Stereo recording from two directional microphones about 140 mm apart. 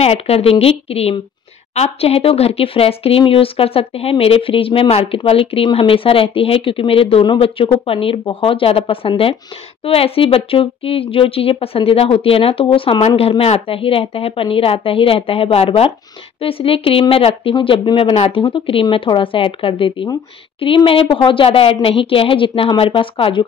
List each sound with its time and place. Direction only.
0.0 s speech: 45° left (ahead or behind)